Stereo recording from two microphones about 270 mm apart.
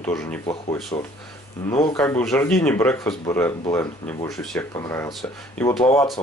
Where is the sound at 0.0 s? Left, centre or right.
Centre.